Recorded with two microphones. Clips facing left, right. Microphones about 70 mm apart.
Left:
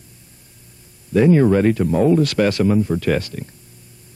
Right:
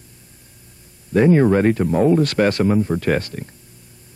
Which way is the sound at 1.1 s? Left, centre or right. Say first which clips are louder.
Even; right.